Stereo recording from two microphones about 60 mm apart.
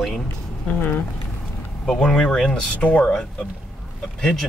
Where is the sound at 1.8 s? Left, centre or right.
Centre.